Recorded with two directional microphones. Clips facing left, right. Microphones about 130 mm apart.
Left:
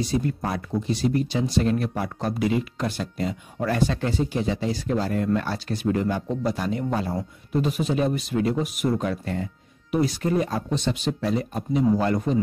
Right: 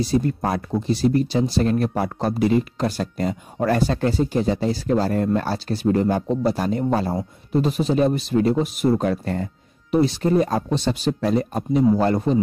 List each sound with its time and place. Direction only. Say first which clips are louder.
0.0 s speech: right 4 dB; 35° right (ahead or behind)
9.0 s speech: right 4 dB; 40° right (ahead or behind)
9.9 s speech: right 5 dB; 30° right (ahead or behind)